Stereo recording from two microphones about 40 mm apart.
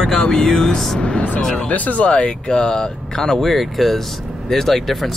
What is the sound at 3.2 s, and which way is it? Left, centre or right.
Speech, centre.